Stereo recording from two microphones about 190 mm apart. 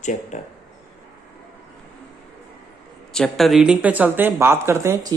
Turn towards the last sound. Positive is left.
turn(degrees=-15)  # may be behind; listen again after turning